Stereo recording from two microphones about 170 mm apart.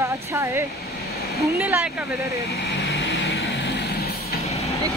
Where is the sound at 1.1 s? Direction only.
65° left (ahead or behind).